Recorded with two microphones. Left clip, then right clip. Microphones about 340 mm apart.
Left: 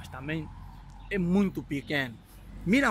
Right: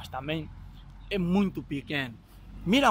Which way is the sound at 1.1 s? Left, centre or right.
Centre.